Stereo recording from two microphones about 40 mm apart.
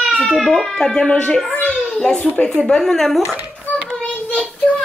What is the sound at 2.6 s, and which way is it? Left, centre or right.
Speech, centre.